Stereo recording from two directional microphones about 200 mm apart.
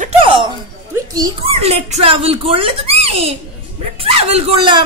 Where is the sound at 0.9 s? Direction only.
20° right (ahead or behind).